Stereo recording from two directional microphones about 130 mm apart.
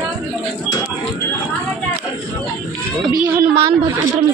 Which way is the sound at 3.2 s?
40° right (ahead or behind).